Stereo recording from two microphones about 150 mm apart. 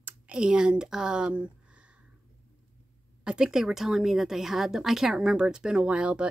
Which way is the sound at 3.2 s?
5° right (ahead or behind).